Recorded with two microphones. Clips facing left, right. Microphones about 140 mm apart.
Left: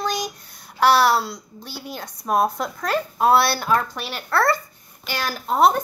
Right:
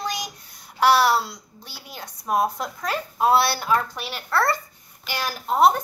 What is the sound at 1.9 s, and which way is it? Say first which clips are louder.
A woman's voice: left 2 dB; 50° left (ahead or behind).